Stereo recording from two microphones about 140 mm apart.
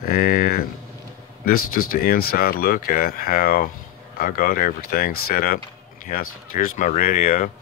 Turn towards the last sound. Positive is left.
turn(degrees=80)